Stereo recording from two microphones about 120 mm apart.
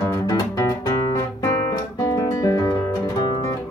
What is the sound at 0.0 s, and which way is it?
Guitar, 25° left (ahead or behind).